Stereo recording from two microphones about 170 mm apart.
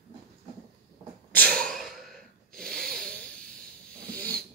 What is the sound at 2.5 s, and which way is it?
Wheeze, 5° left (ahead or behind).